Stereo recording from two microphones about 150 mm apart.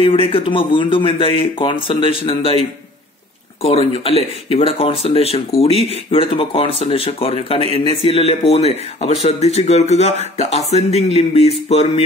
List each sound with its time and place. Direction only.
0.0 s speech: 35° left (ahead or behind)
3.6 s speech: 40° left (ahead or behind)